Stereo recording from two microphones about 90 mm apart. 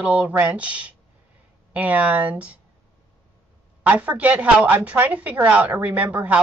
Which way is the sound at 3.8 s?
15° right (ahead or behind).